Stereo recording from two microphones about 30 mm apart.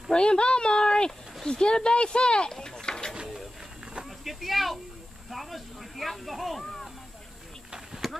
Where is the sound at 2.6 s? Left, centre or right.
Left.